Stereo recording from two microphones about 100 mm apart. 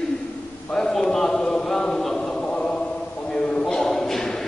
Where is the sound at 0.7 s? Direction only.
5° left (ahead or behind).